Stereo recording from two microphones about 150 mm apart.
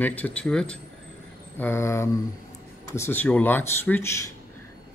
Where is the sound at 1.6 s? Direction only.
15° left (ahead or behind).